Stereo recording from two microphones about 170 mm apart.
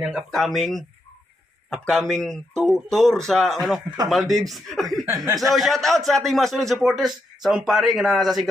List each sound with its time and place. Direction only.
0.0 s a man's voice: 5° right (ahead or behind)
5.0 s speech: 15° right (ahead or behind)
5.5 s a man's voice: centre (ahead or behind)